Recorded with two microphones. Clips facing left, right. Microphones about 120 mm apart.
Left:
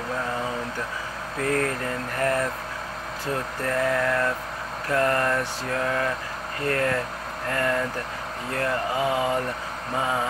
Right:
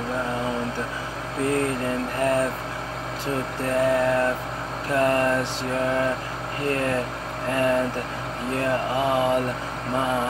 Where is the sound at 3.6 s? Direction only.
20° right (ahead or behind).